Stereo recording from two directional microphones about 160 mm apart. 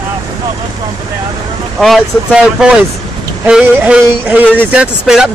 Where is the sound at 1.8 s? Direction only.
Centre (ahead or behind).